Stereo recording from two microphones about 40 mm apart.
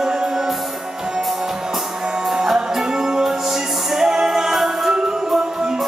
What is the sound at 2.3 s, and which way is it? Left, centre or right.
Music, centre.